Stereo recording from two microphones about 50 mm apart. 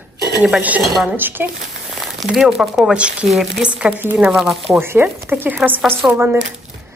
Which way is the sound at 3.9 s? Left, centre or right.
Right.